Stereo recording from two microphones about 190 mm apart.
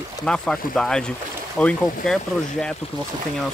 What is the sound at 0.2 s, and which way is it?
Speech, 5° left (ahead or behind).